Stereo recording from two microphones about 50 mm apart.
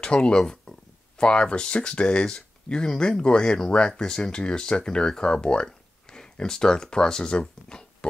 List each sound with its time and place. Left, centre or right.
0.0 s speech: centre